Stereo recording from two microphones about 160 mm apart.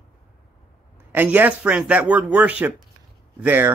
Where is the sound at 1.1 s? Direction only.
10° right (ahead or behind).